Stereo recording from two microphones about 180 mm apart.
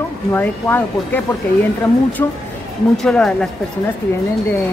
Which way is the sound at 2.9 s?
5° left (ahead or behind).